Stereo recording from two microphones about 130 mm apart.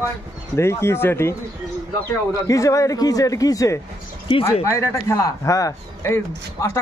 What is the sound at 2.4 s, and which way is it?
Speech, 25° left (ahead or behind).